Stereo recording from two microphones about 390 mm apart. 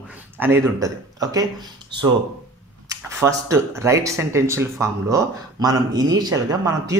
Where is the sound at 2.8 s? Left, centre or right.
Centre.